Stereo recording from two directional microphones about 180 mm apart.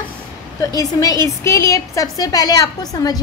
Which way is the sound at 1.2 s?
15° left (ahead or behind).